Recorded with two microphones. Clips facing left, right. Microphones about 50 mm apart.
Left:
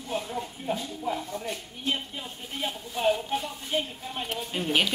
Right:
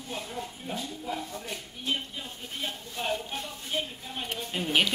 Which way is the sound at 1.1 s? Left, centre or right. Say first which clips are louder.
Left 5 dB; centre.